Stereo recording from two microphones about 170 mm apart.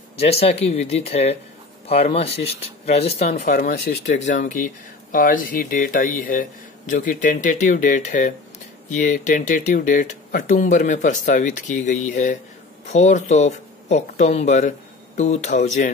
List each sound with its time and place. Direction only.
0.2 s speech: 35° left (ahead or behind)
3.9 s speech: 75° left (ahead or behind)
4.3 s speech: 50° left (ahead or behind)